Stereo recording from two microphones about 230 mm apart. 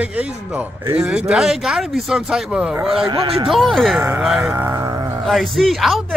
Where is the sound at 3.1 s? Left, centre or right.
Right.